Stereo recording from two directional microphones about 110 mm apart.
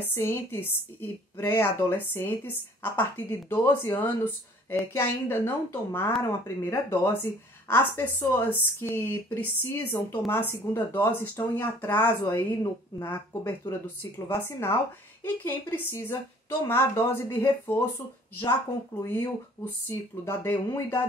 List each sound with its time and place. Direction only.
0.0 s speech: 20° left (ahead or behind)
19.0 s speech: 20° left (ahead or behind)